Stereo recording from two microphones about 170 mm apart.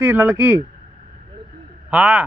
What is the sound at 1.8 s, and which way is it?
Speech, 5° right (ahead or behind).